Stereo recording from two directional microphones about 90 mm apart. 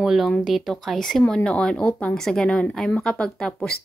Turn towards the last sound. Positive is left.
turn(degrees=10)  # may be behind; listen again after turning